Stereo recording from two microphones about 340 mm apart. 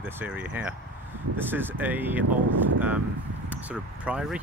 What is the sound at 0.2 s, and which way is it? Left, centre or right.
Speech, centre.